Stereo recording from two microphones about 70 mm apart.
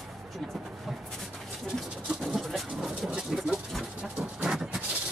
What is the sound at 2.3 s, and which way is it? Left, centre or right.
Vehicle, centre.